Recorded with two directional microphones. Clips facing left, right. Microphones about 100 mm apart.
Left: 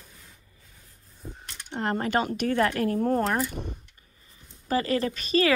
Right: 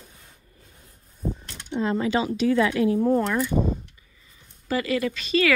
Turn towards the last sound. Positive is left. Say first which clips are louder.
# right 1 dB
turn(degrees=40)  # may be behind; listen again after turning